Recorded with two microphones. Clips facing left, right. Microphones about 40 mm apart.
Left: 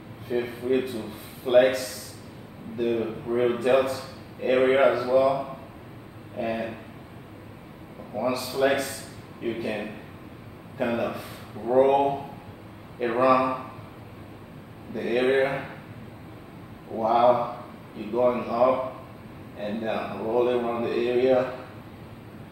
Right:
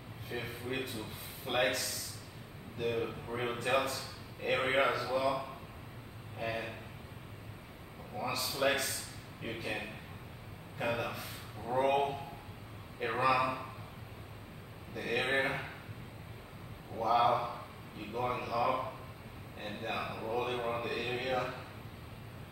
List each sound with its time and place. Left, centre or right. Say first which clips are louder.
0.3 s a man's voice: left 14 dB; centre
8.3 s a man's voice: left 8 dB; centre
15.0 s a man's voice: left 10 dB; centre
17.0 s a man's voice: left 9 dB; centre